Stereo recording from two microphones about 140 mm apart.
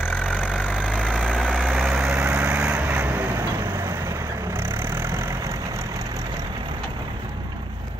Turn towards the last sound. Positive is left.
turn(degrees=-30)  # may be behind; listen again after turning